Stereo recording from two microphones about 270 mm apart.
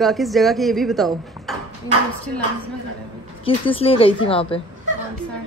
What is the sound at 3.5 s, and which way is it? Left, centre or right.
A woman's voice, left.